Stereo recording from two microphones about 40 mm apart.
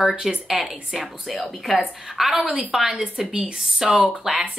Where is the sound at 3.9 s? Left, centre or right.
Right.